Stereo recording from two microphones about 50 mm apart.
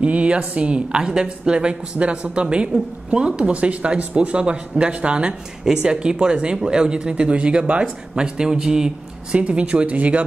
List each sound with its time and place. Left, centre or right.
0.0 s speech: right